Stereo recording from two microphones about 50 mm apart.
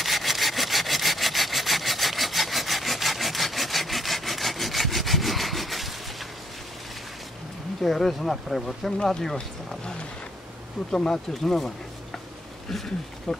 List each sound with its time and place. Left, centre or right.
0.0 s sawing: centre
7.8 s speech: centre
13.3 s speech: centre